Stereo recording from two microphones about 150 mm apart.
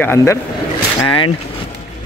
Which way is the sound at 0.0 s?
15° left (ahead or behind).